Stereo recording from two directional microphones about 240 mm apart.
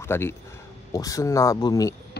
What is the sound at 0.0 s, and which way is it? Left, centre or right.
Speech, centre.